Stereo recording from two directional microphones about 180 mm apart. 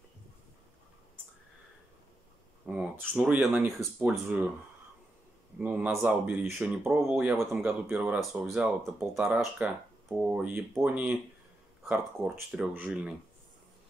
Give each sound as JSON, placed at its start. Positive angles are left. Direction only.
{"t": 2.6, "sound": "speech", "side_deg": -5}
{"t": 5.6, "sound": "speech", "side_deg": -10}
{"t": 12.4, "sound": "speech", "side_deg": -5}